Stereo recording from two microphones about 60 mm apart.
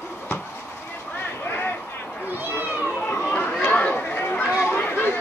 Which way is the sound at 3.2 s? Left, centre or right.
Centre.